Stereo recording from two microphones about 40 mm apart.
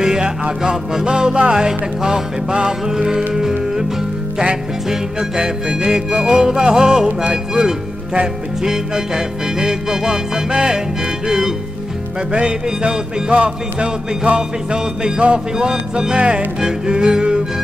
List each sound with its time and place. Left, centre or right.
0.0 s music: centre
4.8 s music: centre
12.3 s music: right
15.3 s music: centre